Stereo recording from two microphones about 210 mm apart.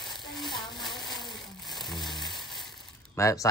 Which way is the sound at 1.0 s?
Centre (ahead or behind).